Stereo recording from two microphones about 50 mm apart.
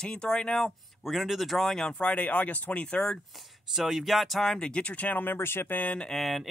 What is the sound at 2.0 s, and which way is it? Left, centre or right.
Speech, left.